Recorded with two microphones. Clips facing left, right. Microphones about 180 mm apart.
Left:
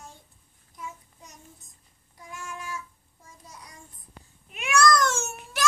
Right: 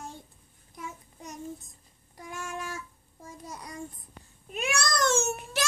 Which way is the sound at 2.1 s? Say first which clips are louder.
Right 3 dB; 70° right (ahead or behind).